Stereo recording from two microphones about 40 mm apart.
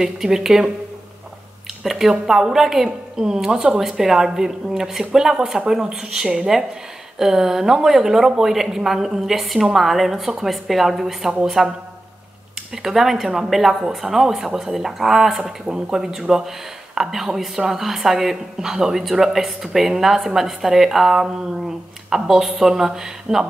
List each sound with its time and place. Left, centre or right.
0.0 s speech: centre
1.8 s a woman's voice: centre
12.7 s speech: centre
15.6 s speech: centre